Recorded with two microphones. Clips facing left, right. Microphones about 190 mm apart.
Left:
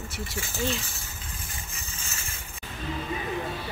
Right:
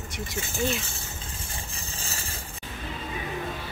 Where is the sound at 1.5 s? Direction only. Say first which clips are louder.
Right 3 dB; 35° right (ahead or behind).